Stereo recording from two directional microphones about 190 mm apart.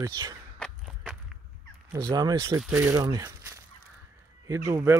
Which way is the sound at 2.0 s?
20° right (ahead or behind).